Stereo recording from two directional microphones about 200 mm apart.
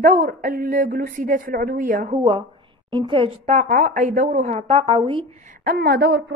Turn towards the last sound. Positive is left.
turn(degrees=-60)  # may be behind; listen again after turning